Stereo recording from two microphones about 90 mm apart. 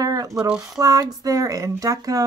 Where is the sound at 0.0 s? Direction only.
40° right (ahead or behind).